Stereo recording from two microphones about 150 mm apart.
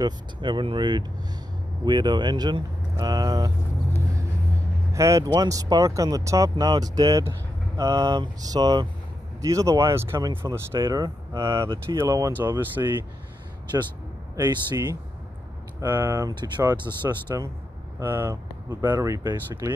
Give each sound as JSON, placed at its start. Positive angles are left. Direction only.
{"t": 0.0, "sound": "speech", "side_deg": -30}
{"t": 4.9, "sound": "speech", "side_deg": -20}
{"t": 14.3, "sound": "speech", "side_deg": -25}
{"t": 15.8, "sound": "speech", "side_deg": -15}